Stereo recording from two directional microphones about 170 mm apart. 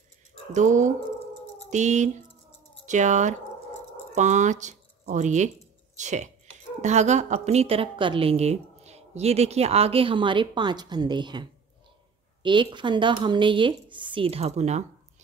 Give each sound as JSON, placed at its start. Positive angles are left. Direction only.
{"t": 0.5, "sound": "speech", "side_deg": -45}
{"t": 5.9, "sound": "a sound", "side_deg": -45}
{"t": 6.8, "sound": "a woman's voice", "side_deg": -45}
{"t": 12.4, "sound": "speech", "side_deg": -30}